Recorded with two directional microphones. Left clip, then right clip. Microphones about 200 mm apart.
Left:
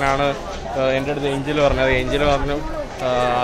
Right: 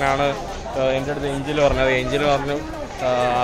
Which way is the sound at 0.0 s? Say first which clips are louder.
Left 1 dB; centre (ahead or behind).